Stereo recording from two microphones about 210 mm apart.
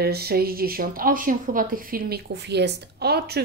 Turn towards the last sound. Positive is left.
turn(degrees=-50)  # may be behind; listen again after turning